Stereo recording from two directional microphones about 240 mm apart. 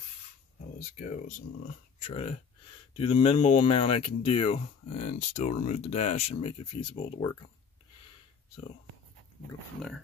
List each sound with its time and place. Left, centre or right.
0.7 s speech: left